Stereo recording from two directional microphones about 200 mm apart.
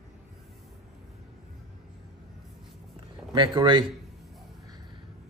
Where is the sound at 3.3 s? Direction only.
20° right (ahead or behind).